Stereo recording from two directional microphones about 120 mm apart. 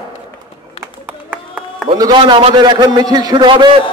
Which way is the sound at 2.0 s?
40° right (ahead or behind).